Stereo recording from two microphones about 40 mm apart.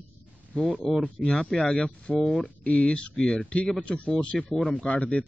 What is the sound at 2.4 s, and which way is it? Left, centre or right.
Speech, left.